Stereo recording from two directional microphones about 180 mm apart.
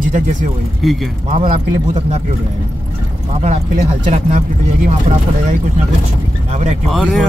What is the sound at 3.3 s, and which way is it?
Speech, 35° right (ahead or behind).